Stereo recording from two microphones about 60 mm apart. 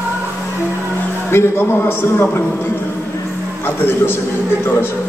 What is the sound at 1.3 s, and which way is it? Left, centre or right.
A man's voice, left.